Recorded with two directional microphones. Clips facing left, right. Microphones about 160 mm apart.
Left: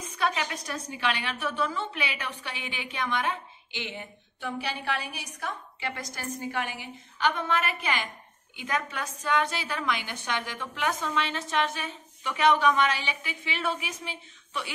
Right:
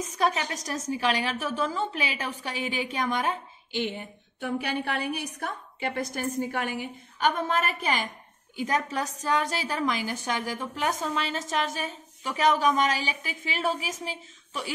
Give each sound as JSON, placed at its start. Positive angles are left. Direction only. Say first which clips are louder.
{"t": 0.0, "sound": "a woman's voice", "louder": "right 3 dB", "side_deg": -40}